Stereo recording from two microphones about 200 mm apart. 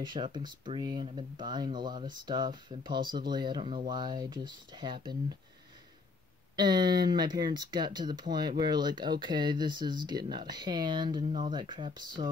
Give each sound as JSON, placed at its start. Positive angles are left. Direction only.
{"t": 0.0, "sound": "speech", "side_deg": -20}
{"t": 6.5, "sound": "speech", "side_deg": -20}